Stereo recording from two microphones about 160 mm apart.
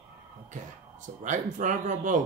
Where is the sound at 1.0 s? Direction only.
55° right (ahead or behind).